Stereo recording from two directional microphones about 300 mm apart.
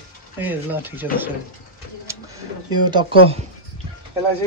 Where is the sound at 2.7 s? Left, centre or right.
Centre.